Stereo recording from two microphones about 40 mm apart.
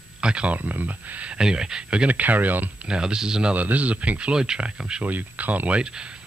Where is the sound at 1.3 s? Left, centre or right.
Centre.